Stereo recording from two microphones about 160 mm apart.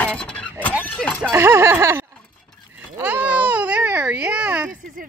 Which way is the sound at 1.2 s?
15° right (ahead or behind).